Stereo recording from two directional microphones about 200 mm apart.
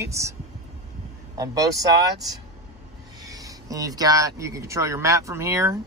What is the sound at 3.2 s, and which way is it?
Speech, 15° right (ahead or behind).